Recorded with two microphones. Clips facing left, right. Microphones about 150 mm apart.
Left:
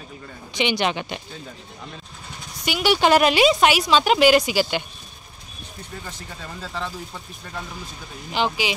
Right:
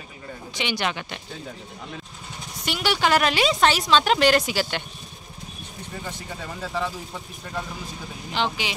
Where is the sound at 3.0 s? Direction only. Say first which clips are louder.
Left 5 dB; 20° left (ahead or behind).